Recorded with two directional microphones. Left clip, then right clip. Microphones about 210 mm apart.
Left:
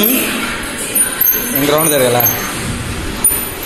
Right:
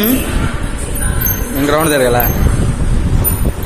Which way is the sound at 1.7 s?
25° right (ahead or behind).